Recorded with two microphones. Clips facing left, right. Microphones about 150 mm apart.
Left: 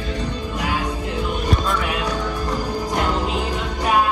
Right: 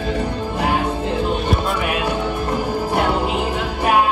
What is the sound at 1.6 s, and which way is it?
Music, 10° right (ahead or behind).